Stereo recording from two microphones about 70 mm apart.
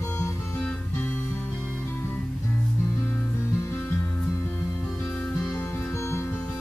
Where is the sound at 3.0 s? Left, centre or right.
Left.